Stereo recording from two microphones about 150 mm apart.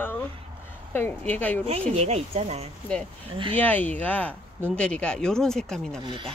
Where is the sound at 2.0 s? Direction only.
45° right (ahead or behind).